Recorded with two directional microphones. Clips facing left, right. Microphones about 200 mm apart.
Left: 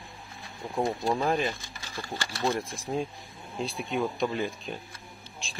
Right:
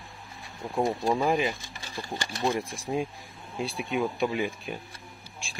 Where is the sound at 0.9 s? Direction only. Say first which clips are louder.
Right 2 dB; 10° right (ahead or behind).